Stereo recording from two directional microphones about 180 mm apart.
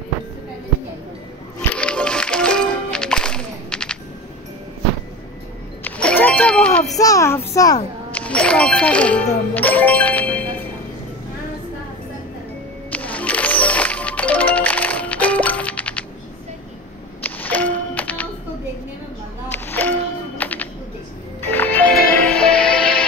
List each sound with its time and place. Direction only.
1.6 s music: 5° left (ahead or behind)
5.9 s a sound: 10° left (ahead or behind)
7.0 s a child's voice: 20° left (ahead or behind)
8.1 s speech: 5° left (ahead or behind)
12.9 s music: 10° left (ahead or behind)
17.2 s a sound: 10° left (ahead or behind)
19.5 s music: 10° left (ahead or behind)